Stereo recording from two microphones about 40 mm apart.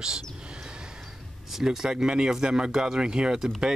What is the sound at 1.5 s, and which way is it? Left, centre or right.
Speech, centre.